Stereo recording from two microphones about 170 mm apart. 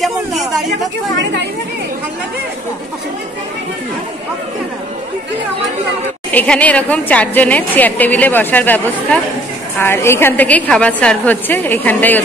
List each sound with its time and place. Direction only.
0.0 s a sound: centre (ahead or behind)
1.1 s speech: 90° right
6.3 s a woman's voice: 5° left (ahead or behind)